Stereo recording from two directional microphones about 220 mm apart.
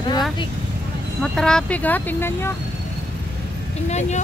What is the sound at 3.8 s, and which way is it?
Speech, 30° left (ahead or behind).